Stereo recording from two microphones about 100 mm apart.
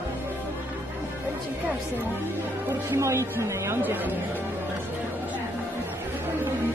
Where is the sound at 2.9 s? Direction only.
30° right (ahead or behind).